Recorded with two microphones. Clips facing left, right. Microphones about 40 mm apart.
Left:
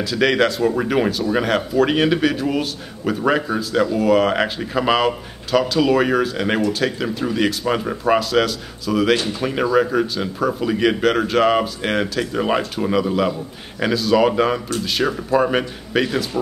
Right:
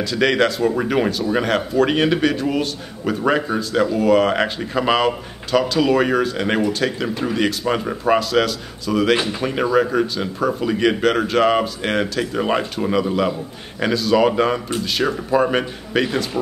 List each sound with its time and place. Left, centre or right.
0.0 s speech: centre
9.1 s speech: centre
9.4 s speech: centre